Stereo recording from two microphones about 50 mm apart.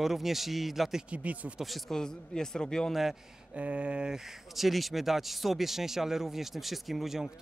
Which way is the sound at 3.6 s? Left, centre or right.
Right.